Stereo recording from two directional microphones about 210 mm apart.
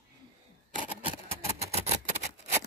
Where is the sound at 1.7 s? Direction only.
30° right (ahead or behind).